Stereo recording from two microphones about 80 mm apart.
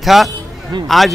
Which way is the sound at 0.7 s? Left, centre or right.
Right.